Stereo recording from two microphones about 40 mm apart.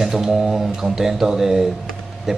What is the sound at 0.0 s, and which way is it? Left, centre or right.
Speech, centre.